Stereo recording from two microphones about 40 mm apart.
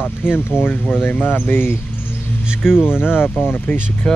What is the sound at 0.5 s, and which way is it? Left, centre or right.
Speech, right.